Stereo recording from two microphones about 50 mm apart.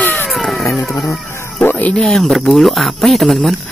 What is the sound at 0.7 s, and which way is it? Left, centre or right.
Music, left.